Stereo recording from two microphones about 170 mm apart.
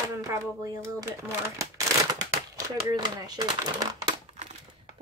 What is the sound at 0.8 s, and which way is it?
Speech, 15° right (ahead or behind).